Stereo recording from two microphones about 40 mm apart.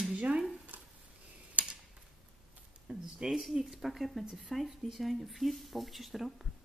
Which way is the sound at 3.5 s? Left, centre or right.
Centre.